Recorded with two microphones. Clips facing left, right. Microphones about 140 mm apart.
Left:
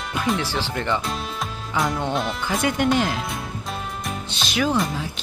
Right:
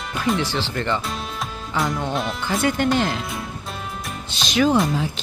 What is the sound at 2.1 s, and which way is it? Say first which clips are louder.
Speech: even; centre (ahead or behind).